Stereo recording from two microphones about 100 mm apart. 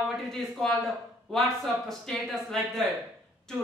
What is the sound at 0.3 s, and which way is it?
A woman's voice, 5° left (ahead or behind).